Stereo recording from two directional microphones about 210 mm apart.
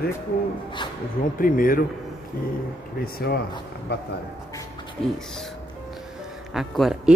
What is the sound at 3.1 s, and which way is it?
Speech, 50° left (ahead or behind).